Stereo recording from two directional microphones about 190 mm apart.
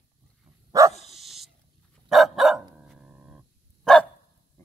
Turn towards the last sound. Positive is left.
turn(degrees=0)  # may be behind; listen again after turning